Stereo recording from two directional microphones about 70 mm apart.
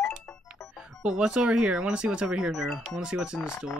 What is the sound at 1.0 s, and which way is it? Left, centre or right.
Speech, centre.